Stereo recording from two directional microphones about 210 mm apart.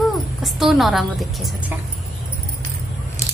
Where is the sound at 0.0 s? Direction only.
Centre (ahead or behind).